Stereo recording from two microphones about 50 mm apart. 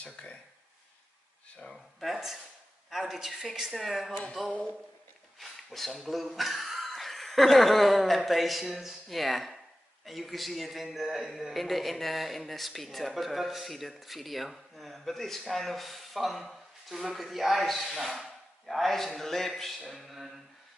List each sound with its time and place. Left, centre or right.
0.0 s speech: left
1.7 s a man's voice: centre
5.4 s a man's voice: centre
19.8 s a sound: centre